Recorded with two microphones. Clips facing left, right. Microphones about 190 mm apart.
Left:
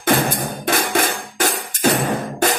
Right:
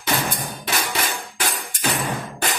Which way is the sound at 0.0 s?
50° left (ahead or behind).